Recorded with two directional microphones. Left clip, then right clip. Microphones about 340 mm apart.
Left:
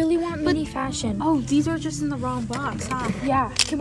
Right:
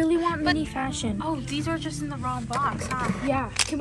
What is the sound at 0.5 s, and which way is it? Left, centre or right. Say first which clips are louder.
Speech: left 2 dB; centre.